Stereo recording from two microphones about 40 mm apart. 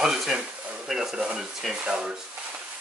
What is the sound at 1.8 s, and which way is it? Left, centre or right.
Speech, right.